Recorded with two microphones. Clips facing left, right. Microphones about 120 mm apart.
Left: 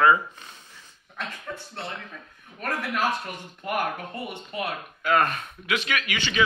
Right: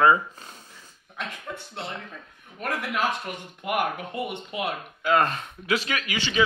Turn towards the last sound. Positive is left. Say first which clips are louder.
# even
turn(degrees=-30)  # may be behind; listen again after turning